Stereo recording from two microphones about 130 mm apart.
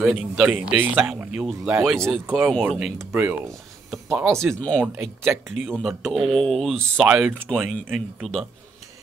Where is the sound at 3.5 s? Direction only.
Centre (ahead or behind).